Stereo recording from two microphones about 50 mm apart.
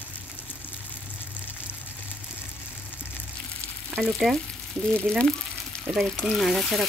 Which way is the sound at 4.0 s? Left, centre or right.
Centre.